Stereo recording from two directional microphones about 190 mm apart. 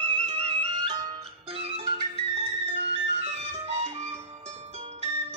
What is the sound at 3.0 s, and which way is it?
Music, 35° right (ahead or behind).